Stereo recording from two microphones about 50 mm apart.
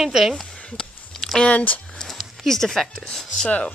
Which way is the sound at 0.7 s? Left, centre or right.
Centre.